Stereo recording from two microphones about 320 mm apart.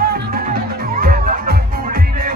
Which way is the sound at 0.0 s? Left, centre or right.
Right.